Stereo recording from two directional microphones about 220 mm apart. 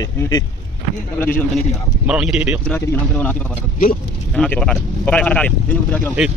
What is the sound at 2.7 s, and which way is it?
Speech, 10° left (ahead or behind).